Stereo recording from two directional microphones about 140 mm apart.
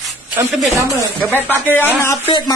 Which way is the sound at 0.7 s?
20° right (ahead or behind).